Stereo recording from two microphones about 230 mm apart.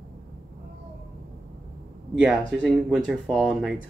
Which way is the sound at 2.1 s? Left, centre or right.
Centre.